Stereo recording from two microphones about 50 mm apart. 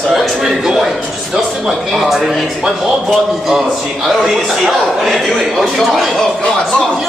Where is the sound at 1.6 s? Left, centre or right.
Centre.